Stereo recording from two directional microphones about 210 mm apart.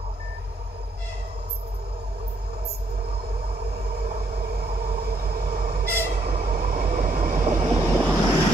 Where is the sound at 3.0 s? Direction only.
50° right (ahead or behind).